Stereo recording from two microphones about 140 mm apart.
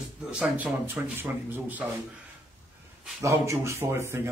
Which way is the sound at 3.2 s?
20° right (ahead or behind).